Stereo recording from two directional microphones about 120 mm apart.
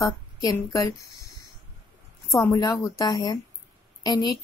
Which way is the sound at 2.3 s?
30° left (ahead or behind).